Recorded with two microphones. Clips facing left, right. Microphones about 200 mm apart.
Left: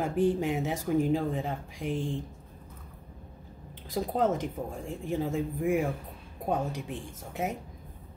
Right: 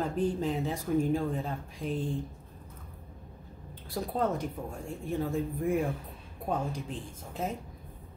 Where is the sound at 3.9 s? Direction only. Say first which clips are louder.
Left 3 dB; 90° left.